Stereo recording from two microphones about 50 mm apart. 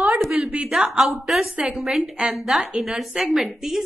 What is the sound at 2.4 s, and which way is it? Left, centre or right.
A woman's voice, centre.